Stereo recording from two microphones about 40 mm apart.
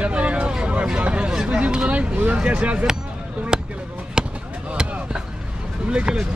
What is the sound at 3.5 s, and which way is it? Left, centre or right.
Speech, centre.